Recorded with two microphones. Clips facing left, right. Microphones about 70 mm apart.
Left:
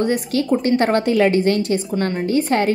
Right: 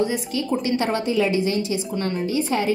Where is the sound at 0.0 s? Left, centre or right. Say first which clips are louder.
Left 4 dB; left.